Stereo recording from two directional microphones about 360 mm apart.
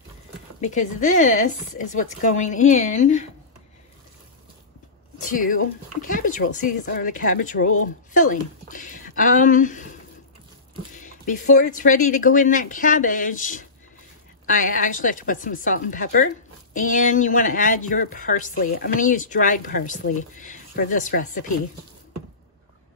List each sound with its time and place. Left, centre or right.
0.6 s speech: left
5.2 s speech: left
11.0 s speech: left